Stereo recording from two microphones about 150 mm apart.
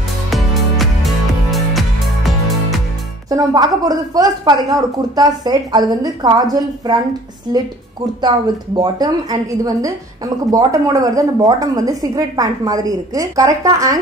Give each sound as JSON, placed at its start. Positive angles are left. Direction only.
{"t": 0.3, "sound": "music", "side_deg": 0}
{"t": 3.3, "sound": "a woman's voice", "side_deg": -25}
{"t": 8.2, "sound": "a woman's voice", "side_deg": -30}